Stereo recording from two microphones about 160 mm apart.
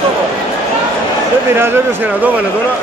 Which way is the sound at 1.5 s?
15° right (ahead or behind).